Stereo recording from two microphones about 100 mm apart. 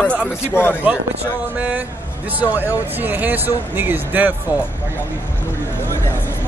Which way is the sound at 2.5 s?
20° right (ahead or behind).